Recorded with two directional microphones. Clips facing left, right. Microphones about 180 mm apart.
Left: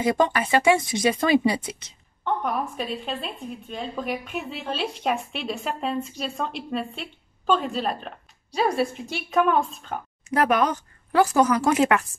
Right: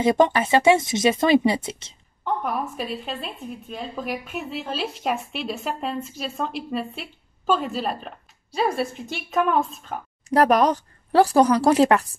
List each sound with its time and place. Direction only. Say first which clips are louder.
0.0 s speech: right 3 dB; 25° right (ahead or behind)
2.2 s a woman's voice: even; centre (ahead or behind)
10.3 s a woman's voice: right 4 dB; 35° right (ahead or behind)